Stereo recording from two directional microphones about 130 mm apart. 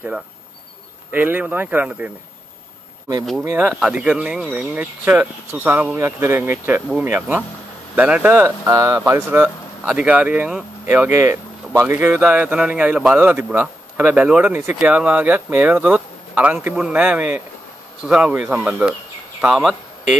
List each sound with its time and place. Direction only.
1.1 s a man's voice: 15° right (ahead or behind)
3.4 s a man's voice: 10° right (ahead or behind)